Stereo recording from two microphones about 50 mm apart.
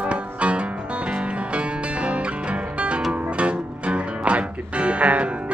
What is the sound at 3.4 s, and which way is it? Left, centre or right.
Music, right.